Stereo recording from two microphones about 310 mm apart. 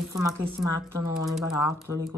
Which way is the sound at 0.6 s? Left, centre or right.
Left.